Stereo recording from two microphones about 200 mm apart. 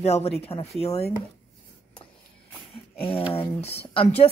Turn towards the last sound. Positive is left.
turn(degrees=30)  # may be behind; listen again after turning